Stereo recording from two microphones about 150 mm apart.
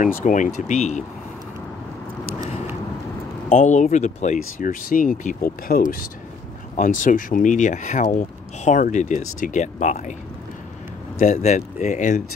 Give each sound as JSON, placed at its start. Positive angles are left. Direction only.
{"t": 0.0, "sound": "speech", "side_deg": 60}
{"t": 3.4, "sound": "speech", "side_deg": 55}
{"t": 6.8, "sound": "speech", "side_deg": 60}
{"t": 11.3, "sound": "speech", "side_deg": 50}